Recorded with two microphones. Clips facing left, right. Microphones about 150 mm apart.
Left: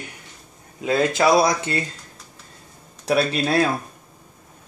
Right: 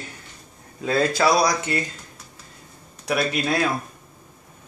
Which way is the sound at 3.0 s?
35° left (ahead or behind).